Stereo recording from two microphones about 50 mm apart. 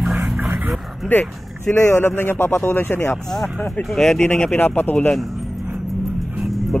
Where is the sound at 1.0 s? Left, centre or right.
Left.